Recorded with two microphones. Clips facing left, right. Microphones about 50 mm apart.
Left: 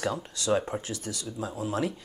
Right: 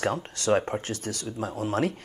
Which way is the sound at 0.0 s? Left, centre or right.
Right.